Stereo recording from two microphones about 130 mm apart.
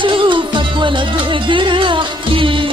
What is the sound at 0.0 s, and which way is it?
Music, 40° right (ahead or behind).